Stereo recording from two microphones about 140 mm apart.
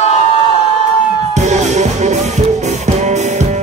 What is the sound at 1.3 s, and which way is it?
Music, 55° right (ahead or behind).